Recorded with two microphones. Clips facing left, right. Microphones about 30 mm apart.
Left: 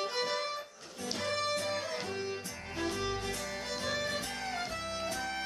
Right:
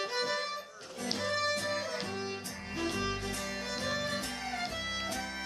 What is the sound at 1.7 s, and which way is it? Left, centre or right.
Music, centre.